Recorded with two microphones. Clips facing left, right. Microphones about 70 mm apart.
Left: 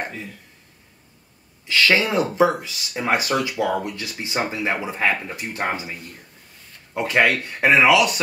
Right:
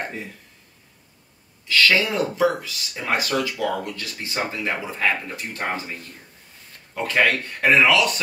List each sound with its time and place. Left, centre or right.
1.7 s speech: centre
6.9 s speech: centre